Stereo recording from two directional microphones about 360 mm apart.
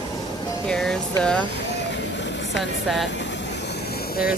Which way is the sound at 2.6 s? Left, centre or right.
Centre.